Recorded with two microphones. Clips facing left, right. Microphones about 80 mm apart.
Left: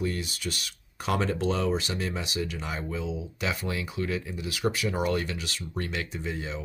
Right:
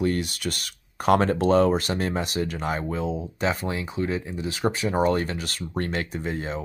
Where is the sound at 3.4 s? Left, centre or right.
Right.